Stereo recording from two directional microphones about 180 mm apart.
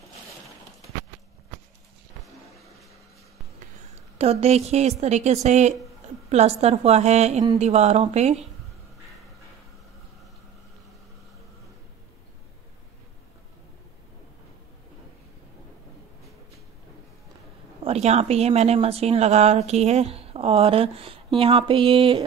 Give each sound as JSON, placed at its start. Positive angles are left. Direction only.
{"t": 2.1, "sound": "a sound", "side_deg": 0}
{"t": 4.2, "sound": "speech", "side_deg": -35}
{"t": 17.8, "sound": "speech", "side_deg": -35}